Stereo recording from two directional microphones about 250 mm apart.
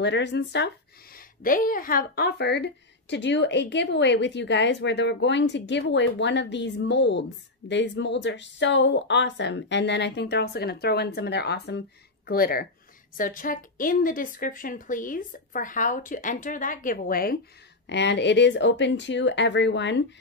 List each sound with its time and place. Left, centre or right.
0.0 s a woman's voice: left